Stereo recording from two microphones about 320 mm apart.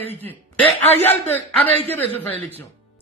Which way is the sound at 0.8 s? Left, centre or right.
Centre.